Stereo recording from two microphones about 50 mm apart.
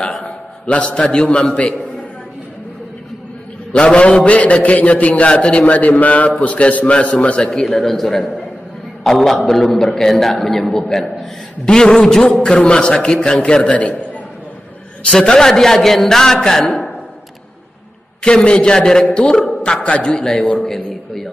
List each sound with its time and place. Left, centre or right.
0.2 s a man's voice: left
3.7 s a man's voice: left
7.4 s a man's voice: centre; by 13.9 s left
15.0 s a man's voice: centre
18.2 s a man's voice: centre
20.1 s a man's voice: centre